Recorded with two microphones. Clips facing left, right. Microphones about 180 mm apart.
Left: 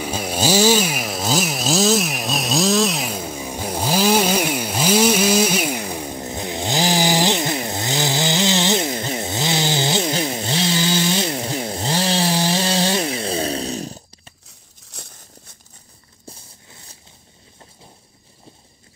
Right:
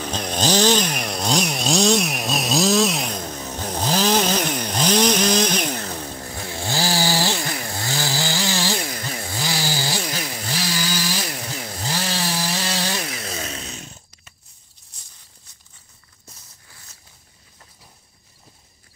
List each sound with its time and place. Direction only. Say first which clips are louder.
0.0 s chainsaw: left 2 dB; 10° left (ahead or behind); by 14.3 s 35° left (ahead or behind)
14.9 s a sound: left 14 dB; 70° left (ahead or behind)
16.3 s walk: left 9 dB; 30° left (ahead or behind)